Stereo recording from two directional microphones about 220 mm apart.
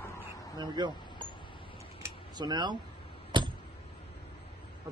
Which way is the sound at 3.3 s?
20° right (ahead or behind).